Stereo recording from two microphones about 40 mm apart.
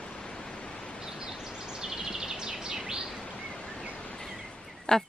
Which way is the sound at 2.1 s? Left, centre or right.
Centre.